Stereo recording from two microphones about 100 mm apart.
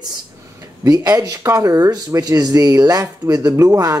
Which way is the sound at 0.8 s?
35° right (ahead or behind).